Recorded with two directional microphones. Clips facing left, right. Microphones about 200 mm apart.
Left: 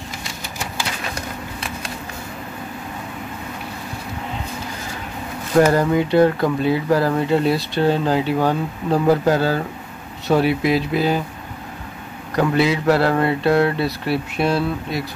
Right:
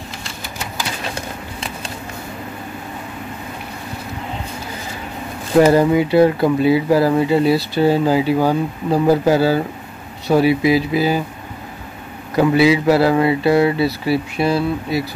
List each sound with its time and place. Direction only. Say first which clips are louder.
5.6 s speech: right 3 dB; 10° right (ahead or behind)
12.4 s speech: right 5 dB; 5° right (ahead or behind)